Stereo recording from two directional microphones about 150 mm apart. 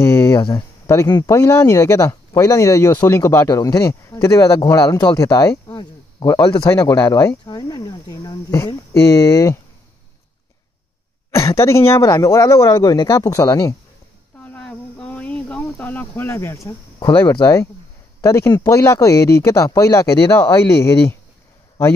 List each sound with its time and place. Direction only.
0.0 s speech: 20° left (ahead or behind)
11.3 s speech: 20° left (ahead or behind)
14.4 s snake: 10° left (ahead or behind)
18.2 s speech: 20° left (ahead or behind)